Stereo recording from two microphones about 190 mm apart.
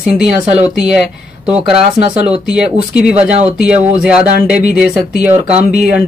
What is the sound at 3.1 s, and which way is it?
Speech, 35° right (ahead or behind).